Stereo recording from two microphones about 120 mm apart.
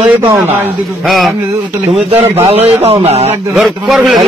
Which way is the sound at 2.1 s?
55° right (ahead or behind).